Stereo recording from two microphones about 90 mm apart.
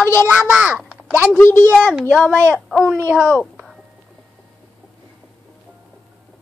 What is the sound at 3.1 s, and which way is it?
Speech, 15° right (ahead or behind).